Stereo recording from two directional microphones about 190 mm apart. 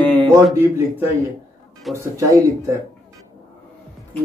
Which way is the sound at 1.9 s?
Centre (ahead or behind).